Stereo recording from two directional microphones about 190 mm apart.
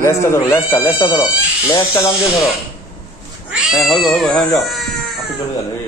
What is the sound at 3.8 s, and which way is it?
Speech, centre (ahead or behind).